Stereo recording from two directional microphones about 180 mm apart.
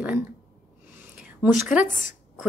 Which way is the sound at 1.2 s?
Centre (ahead or behind).